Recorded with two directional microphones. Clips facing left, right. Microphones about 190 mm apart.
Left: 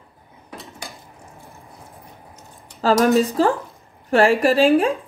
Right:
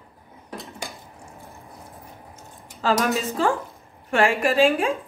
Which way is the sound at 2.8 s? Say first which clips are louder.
Left 7 dB; 35° left (ahead or behind).